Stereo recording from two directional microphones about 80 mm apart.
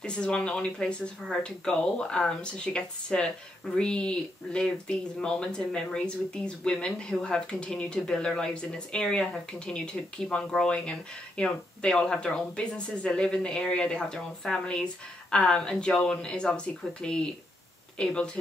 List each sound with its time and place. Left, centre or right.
0.0 s speech: centre